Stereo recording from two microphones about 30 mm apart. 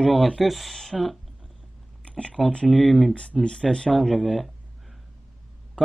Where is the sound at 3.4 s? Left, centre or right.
Left.